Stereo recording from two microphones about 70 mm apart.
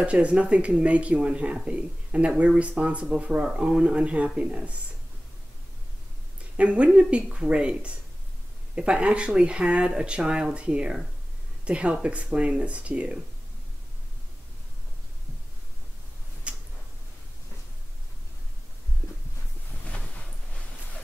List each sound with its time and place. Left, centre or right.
0.0 s speech: centre
6.5 s speech: centre
16.5 s tick-tock: centre
19.8 s a sound: centre